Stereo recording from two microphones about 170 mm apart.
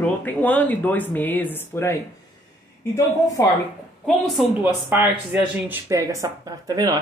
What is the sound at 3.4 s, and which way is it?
Speech, 20° left (ahead or behind).